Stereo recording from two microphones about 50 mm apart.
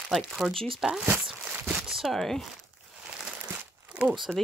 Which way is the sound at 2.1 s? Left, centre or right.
Centre.